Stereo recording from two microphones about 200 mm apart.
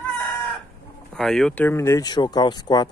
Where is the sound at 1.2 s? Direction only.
5° left (ahead or behind); by 2.8 s 20° left (ahead or behind).